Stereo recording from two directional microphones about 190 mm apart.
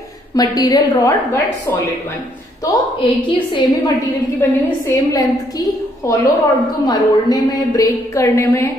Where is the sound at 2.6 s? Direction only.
25° left (ahead or behind).